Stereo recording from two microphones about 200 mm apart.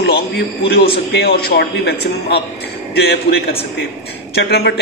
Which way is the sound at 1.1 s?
50° left (ahead or behind).